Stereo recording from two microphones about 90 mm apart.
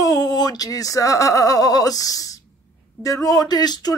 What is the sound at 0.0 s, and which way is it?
Speech, 45° left (ahead or behind).